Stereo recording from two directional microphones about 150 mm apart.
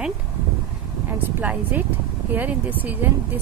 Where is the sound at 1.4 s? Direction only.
10° right (ahead or behind).